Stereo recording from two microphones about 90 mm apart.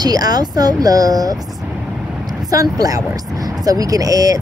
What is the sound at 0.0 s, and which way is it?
Speech, 45° right (ahead or behind).